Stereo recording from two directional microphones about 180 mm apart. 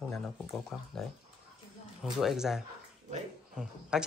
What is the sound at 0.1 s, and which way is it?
Speech, 5° left (ahead or behind).